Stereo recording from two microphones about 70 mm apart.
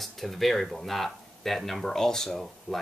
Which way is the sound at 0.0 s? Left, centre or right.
Centre.